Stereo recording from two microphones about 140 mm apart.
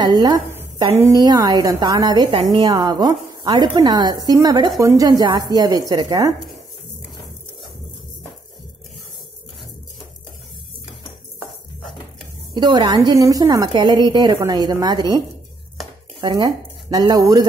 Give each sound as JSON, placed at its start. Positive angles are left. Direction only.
{"t": 0.0, "sound": "speech", "side_deg": -30}
{"t": 12.5, "sound": "speech", "side_deg": -30}